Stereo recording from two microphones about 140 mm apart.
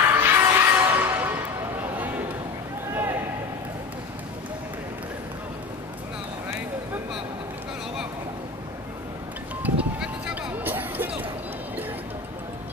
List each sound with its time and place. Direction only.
0.0 s music: 15° right (ahead or behind)
1.8 s a sound: 10° right (ahead or behind)
9.6 s music: 10° right (ahead or behind)